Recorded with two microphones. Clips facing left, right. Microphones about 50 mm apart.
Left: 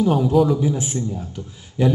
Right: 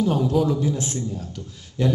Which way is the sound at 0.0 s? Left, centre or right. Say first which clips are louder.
Left 4 dB; centre.